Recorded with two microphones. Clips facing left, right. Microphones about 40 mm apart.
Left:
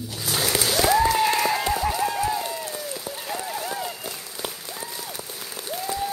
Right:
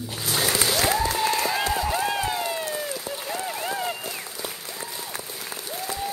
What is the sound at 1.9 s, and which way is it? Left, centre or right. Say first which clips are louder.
Run: left 1 dB; right.